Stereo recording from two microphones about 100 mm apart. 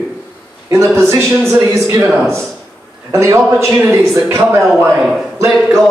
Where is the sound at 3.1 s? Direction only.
30° right (ahead or behind).